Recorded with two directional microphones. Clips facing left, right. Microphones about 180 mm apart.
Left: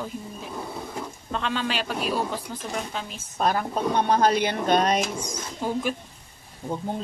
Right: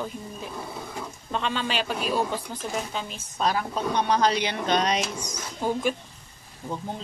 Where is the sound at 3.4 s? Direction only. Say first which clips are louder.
Left 2 dB; 50° left (ahead or behind).